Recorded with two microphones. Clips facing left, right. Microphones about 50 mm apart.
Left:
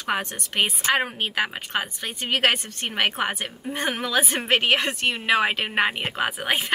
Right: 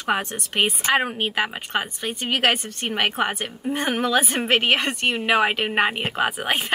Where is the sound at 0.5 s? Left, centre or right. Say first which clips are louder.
Right 2 dB; centre.